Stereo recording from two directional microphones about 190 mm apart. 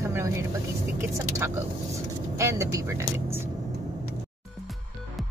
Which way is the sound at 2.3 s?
15° right (ahead or behind).